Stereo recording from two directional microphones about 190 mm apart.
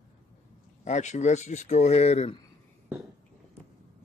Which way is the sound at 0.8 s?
40° left (ahead or behind).